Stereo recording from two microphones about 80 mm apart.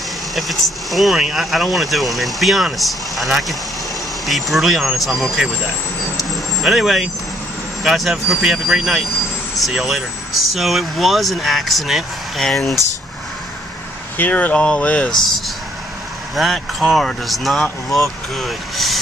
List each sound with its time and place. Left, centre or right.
0.4 s speech: centre
6.6 s speech: centre
14.1 s speech: left
15.0 s speech: centre